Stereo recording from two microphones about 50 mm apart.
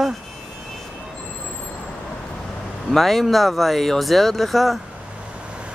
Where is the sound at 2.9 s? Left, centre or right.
Centre.